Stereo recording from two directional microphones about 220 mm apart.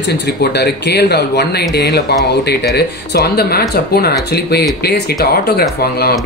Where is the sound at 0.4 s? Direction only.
50° left (ahead or behind).